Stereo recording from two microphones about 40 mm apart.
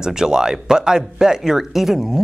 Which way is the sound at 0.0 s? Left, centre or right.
Centre.